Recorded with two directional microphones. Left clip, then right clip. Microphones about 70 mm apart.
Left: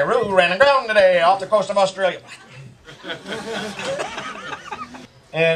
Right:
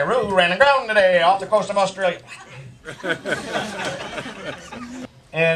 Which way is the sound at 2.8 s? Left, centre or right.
Right.